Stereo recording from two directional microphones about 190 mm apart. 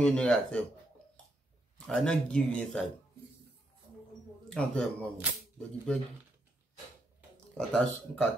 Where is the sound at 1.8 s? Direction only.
5° left (ahead or behind).